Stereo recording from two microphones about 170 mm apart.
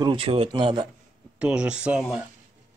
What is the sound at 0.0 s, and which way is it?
Speech, 30° right (ahead or behind).